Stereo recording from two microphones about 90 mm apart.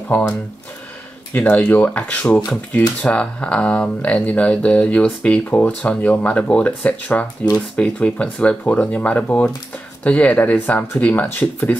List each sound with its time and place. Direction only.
0.1 s speech: 20° left (ahead or behind)
1.3 s speech: 15° left (ahead or behind)